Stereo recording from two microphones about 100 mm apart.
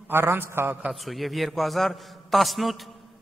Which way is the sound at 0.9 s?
Centre (ahead or behind).